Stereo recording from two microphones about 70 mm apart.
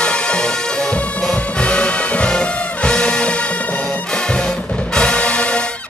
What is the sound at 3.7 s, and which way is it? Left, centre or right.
Music, centre.